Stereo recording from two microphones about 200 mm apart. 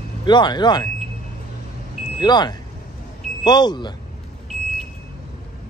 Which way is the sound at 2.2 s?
20° left (ahead or behind).